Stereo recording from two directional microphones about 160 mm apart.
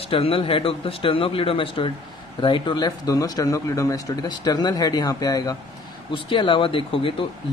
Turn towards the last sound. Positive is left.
turn(degrees=35)  # may be behind; listen again after turning